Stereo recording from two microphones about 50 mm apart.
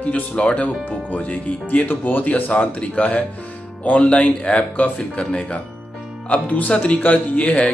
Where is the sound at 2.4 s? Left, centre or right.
Left.